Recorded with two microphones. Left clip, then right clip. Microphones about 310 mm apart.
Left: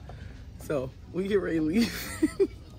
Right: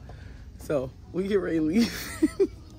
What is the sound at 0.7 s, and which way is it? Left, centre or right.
Speech, centre.